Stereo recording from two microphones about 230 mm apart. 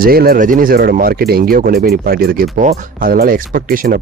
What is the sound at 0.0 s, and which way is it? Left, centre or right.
Speech, right.